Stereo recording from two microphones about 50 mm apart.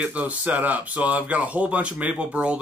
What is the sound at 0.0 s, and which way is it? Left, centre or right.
Speech, right.